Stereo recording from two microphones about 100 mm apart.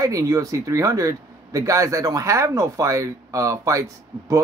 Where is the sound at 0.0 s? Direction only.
35° right (ahead or behind).